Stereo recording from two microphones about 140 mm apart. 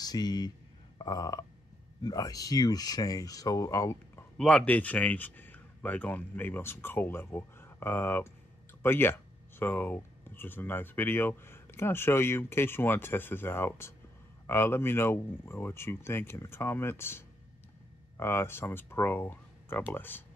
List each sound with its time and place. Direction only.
0.0 s speech: 30° left (ahead or behind)
0.9 s a sound: 30° left (ahead or behind)
2.0 s speech: 25° left (ahead or behind)
4.4 s speech: 5° left (ahead or behind)